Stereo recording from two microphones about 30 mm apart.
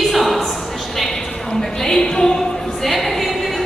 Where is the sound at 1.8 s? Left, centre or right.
Left.